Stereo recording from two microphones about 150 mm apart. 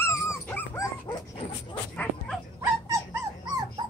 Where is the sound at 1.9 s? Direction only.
10° left (ahead or behind).